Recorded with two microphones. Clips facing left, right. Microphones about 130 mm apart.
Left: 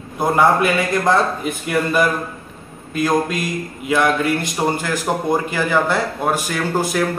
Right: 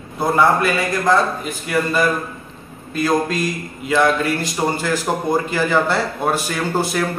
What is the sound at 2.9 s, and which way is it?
A man's voice, 15° left (ahead or behind).